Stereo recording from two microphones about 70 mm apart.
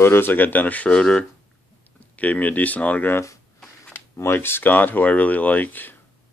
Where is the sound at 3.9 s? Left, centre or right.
Left.